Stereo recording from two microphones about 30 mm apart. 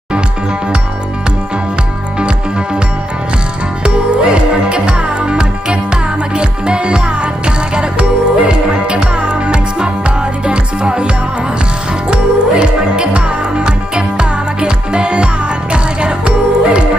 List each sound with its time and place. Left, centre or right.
2.1 s music: right
3.8 s music: right
12.1 s music: right